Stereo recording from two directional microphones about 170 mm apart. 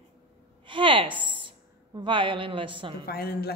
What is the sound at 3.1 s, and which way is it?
Speech, 65° left (ahead or behind).